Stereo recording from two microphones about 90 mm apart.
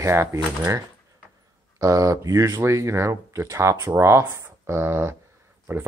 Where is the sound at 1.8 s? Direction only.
40° right (ahead or behind).